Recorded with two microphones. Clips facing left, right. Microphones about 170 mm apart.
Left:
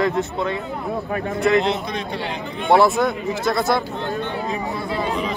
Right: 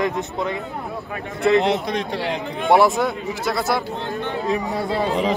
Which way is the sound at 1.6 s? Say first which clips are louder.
Right 2 dB; 80° right.